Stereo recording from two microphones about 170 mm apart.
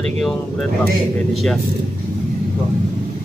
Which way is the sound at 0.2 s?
Centre (ahead or behind).